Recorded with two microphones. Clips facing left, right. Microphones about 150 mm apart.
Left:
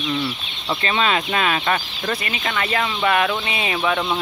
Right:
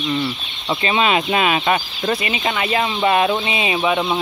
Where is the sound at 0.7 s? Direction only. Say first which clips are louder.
Right 3 dB; 15° right (ahead or behind).